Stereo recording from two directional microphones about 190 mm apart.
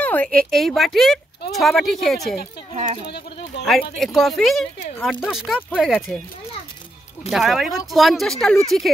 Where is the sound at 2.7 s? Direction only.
35° right (ahead or behind).